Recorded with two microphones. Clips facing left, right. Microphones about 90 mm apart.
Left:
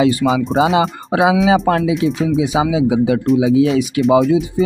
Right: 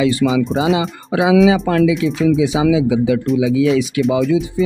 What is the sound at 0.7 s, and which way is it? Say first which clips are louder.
Speech: left 3 dB; 35° left (ahead or behind).